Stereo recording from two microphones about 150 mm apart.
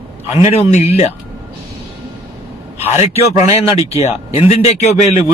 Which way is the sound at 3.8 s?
45° left (ahead or behind).